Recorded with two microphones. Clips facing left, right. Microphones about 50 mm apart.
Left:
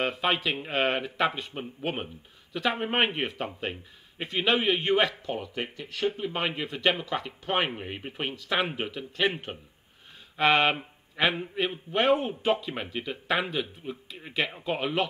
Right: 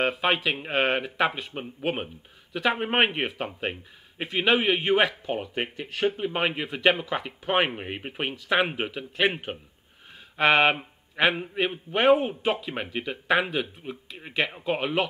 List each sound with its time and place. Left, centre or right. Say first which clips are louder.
0.0 s speech: right 3 dB; centre
1.5 s speech: right 3 dB; centre
5.2 s speech: right 3 dB; right
6.3 s speech: right 3 dB; centre
10.3 s speech: right 2 dB; centre